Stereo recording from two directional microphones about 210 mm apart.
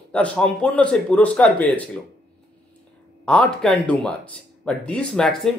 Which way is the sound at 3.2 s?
5° left (ahead or behind).